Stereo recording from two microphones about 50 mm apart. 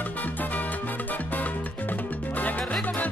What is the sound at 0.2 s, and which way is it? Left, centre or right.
Music, left.